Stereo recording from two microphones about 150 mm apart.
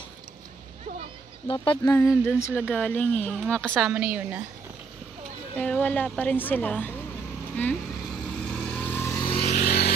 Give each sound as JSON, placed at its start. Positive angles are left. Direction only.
{"t": 1.5, "sound": "speech", "side_deg": 35}
{"t": 2.2, "sound": "a woman's voice", "side_deg": 15}
{"t": 3.9, "sound": "a woman's voice", "side_deg": -10}
{"t": 5.6, "sound": "a woman's voice", "side_deg": 10}
{"t": 7.5, "sound": "vehicle", "side_deg": 10}
{"t": 9.2, "sound": "vehicle", "side_deg": 40}
{"t": 9.5, "sound": "vehicle", "side_deg": 65}